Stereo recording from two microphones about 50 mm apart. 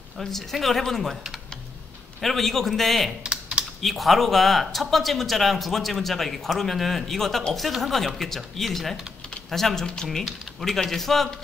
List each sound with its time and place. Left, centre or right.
0.2 s speech: centre
1.1 s speech: centre
2.1 s speech: centre
3.3 s computer keyboard: centre
3.8 s speech: centre